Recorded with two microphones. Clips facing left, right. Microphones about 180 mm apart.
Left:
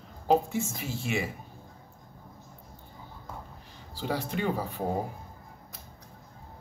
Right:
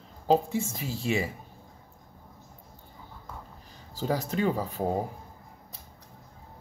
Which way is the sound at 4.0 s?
45° right (ahead or behind).